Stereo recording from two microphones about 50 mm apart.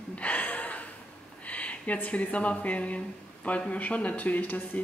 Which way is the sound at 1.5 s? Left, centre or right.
Left.